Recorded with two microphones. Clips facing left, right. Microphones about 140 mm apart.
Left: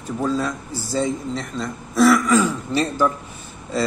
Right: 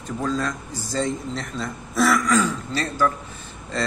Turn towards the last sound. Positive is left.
turn(degrees=5)  # may be behind; listen again after turning